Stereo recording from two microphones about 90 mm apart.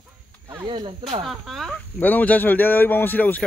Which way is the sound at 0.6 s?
70° right (ahead or behind).